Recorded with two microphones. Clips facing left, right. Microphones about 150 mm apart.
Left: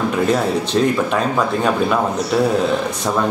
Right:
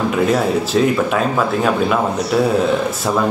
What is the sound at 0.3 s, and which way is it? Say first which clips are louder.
Speech: right 1 dB; centre (ahead or behind).